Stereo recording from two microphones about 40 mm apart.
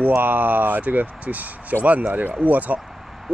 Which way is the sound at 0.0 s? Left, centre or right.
Right.